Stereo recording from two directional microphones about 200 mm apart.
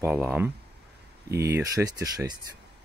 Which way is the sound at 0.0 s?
10° right (ahead or behind).